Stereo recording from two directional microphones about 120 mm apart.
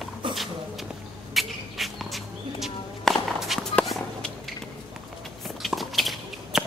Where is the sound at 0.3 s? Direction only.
Centre (ahead or behind).